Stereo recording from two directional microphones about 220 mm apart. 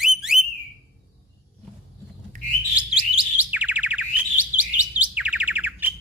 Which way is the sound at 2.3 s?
35° right (ahead or behind).